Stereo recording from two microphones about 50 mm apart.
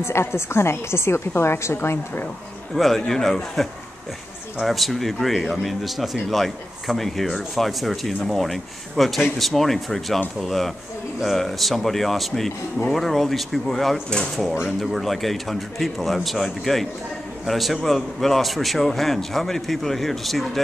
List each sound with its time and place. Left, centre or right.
0.0 s a woman's voice: left
2.7 s a man's voice: centre
4.6 s a man's voice: centre
15.0 s a man's voice: centre